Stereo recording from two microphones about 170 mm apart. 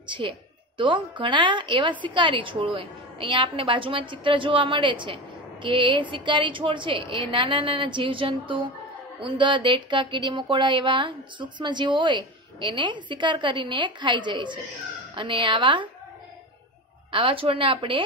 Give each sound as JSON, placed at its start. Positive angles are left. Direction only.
{"t": 0.0, "sound": "a woman's voice", "side_deg": -30}
{"t": 17.1, "sound": "a woman's voice", "side_deg": -30}